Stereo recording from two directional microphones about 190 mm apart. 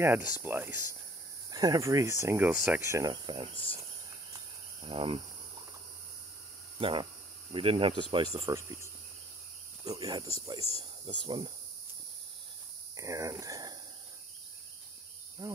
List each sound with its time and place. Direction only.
0.0 s speech: 10° right (ahead or behind)
4.8 s speech: 30° right (ahead or behind)
6.8 s speech: 25° right (ahead or behind)
9.8 s speech: 20° right (ahead or behind)
12.9 s speech: 15° right (ahead or behind)
15.4 s speech: 20° right (ahead or behind)